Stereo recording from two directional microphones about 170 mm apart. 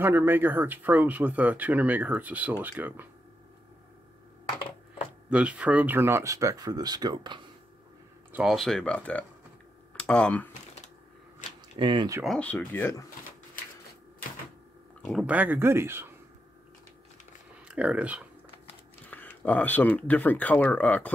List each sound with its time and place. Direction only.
0.0 s speech: 15° right (ahead or behind)
5.3 s speech: 5° right (ahead or behind); by 7.4 s 25° right (ahead or behind)
8.3 s speech: 5° right (ahead or behind)
11.8 s speech: 25° right (ahead or behind)
12.2 s speech: 5° left (ahead or behind)
15.0 s speech: centre (ahead or behind)
17.6 s speech: 5° right (ahead or behind)
19.0 s speech: 10° left (ahead or behind)